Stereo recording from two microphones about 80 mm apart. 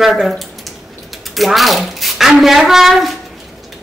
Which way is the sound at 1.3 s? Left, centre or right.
Centre.